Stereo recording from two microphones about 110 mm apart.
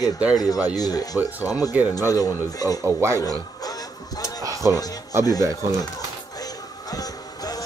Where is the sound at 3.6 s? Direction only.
35° left (ahead or behind).